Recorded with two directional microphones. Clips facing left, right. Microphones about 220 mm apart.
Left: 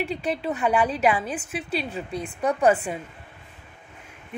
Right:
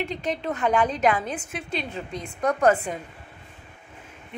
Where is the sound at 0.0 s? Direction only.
10° left (ahead or behind).